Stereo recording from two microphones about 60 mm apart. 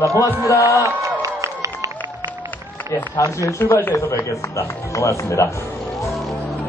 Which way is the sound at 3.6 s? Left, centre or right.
Left.